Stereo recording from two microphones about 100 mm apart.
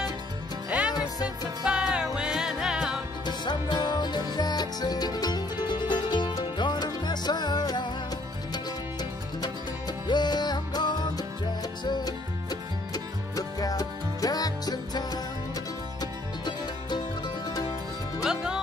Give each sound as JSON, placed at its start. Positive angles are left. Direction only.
{"t": 0.7, "sound": "music", "side_deg": -10}
{"t": 3.3, "sound": "music", "side_deg": 50}
{"t": 10.0, "sound": "music", "side_deg": 45}
{"t": 18.2, "sound": "music", "side_deg": -5}